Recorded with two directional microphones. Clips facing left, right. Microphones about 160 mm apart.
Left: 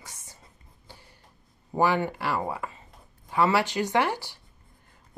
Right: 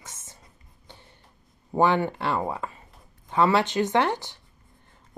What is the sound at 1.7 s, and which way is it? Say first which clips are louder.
A woman's voice: right 2 dB; 25° right (ahead or behind).